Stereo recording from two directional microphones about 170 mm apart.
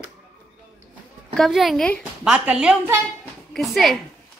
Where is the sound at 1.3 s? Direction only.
Centre (ahead or behind).